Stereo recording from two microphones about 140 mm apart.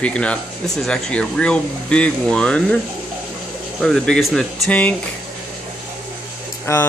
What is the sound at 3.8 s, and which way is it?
Speech, 5° left (ahead or behind).